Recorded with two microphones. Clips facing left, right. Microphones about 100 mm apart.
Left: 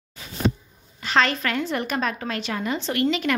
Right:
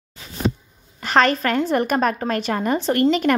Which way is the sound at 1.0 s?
45° right (ahead or behind).